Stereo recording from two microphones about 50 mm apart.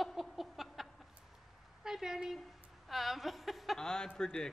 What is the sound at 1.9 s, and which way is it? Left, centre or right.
A woman's voice, centre.